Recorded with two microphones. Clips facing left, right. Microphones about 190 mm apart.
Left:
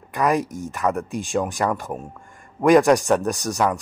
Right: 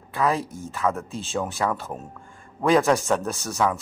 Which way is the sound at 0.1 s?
15° left (ahead or behind).